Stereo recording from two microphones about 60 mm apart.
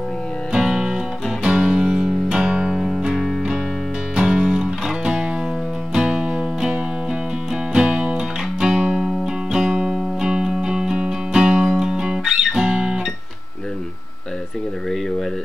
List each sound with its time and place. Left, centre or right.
0.5 s music: centre
4.1 s music: centre